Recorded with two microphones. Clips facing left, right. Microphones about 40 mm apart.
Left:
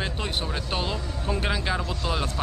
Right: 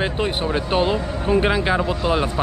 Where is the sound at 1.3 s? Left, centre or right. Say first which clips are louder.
Right 9 dB; right.